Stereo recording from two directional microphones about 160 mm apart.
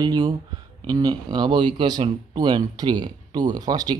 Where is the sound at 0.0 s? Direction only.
25° right (ahead or behind).